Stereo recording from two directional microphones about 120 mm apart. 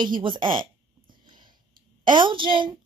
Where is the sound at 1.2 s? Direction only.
40° right (ahead or behind).